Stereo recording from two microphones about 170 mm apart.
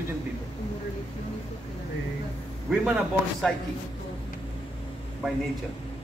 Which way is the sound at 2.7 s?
5° right (ahead or behind).